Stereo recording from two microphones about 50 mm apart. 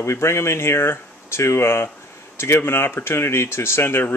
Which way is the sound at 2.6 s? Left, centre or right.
Left.